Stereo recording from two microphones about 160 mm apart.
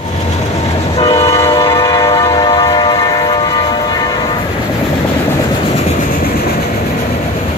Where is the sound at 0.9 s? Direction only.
35° left (ahead or behind).